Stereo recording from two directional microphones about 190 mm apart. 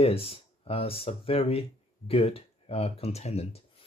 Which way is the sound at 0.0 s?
30° left (ahead or behind).